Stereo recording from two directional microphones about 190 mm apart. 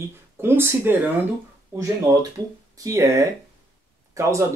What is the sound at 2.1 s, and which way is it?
Speech, 15° right (ahead or behind).